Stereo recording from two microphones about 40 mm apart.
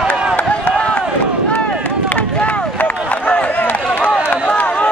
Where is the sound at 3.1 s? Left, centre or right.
Left.